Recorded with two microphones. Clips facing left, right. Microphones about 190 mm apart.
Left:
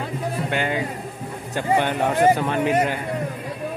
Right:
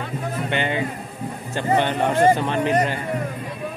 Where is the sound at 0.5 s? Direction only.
5° left (ahead or behind).